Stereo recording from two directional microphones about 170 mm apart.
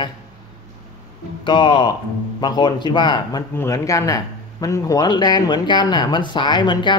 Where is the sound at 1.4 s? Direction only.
25° left (ahead or behind).